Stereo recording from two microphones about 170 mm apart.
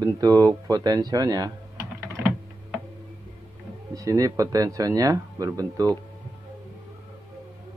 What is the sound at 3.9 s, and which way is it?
Speech, 20° right (ahead or behind).